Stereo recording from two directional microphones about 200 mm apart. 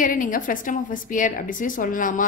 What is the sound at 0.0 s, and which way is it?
A woman's voice, 40° left (ahead or behind).